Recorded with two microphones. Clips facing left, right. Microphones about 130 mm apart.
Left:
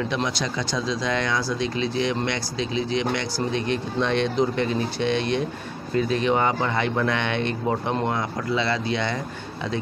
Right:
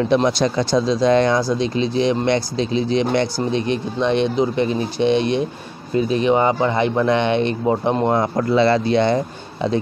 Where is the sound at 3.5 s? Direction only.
20° right (ahead or behind).